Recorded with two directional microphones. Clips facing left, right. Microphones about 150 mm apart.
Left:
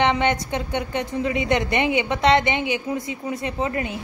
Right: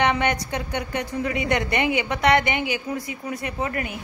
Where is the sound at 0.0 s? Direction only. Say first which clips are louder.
Left 2 dB; 20° left (ahead or behind).